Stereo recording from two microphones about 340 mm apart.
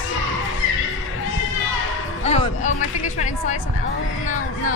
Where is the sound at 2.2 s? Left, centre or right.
Centre.